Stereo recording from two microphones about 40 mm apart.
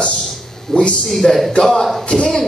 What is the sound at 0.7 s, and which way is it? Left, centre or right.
Speech, centre.